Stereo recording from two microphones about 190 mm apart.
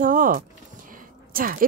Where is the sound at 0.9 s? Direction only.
50° right (ahead or behind).